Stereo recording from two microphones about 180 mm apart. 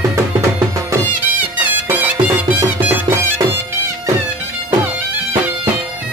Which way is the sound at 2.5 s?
15° right (ahead or behind).